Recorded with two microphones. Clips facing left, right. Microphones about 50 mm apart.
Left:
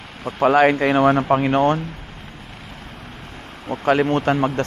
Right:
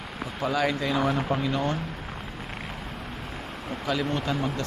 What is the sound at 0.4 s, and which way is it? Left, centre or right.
Speech, left.